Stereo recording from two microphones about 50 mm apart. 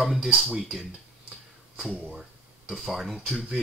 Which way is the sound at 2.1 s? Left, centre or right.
Centre.